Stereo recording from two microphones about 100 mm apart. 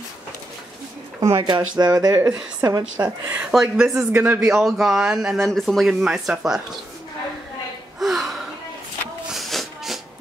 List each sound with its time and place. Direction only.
1.4 s speech: 45° right (ahead or behind)
3.0 s speech: 15° right (ahead or behind)
3.5 s a man's voice: centre (ahead or behind)
4.0 s a man's voice: 20° right (ahead or behind)
4.4 s a man's voice: 5° right (ahead or behind)
8.0 s gasp: centre (ahead or behind)
9.3 s a sound: centre (ahead or behind)